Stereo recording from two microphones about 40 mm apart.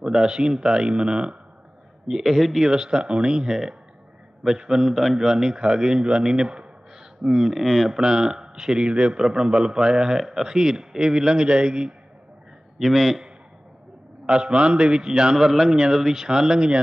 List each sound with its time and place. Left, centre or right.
0.0 s speech: centre
2.0 s a man's voice: centre
2.6 s a man's voice: centre
7.2 s a man's voice: centre
8.0 s a man's voice: centre
10.1 s a man's voice: centre; by 11.9 s right
12.7 s a man's voice: centre
14.2 s speech: right
15.3 s a man's voice: centre